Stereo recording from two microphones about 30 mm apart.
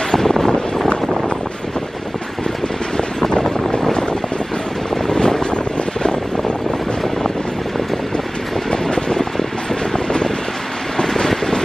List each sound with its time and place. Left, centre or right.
0.1 s wind: centre
3.0 s vehicle: left
5.0 s vehicle: left
8.6 s vehicle: left